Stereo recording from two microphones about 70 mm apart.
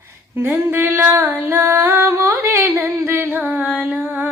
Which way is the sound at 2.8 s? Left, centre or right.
Right.